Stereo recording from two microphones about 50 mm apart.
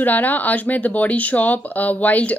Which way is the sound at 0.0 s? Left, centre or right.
Left.